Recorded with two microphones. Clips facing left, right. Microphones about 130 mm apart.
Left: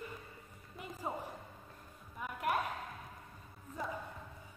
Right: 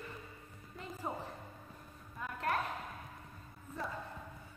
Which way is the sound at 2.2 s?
10° left (ahead or behind).